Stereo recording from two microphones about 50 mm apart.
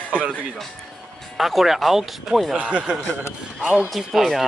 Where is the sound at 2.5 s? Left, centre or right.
Right.